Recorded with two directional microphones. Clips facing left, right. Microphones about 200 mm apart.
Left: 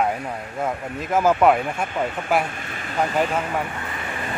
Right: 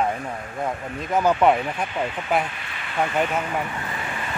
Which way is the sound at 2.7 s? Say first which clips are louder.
Left 4 dB; 45° left (ahead or behind).